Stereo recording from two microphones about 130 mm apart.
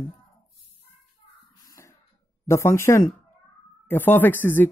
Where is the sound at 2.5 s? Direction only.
20° left (ahead or behind).